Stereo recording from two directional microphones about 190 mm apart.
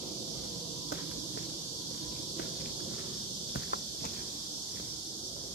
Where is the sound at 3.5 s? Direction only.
65° left (ahead or behind).